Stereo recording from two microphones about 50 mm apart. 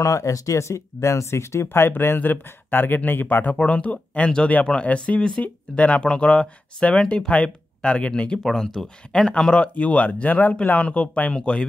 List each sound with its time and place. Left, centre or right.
0.0 s speech: left
3.5 s speech: left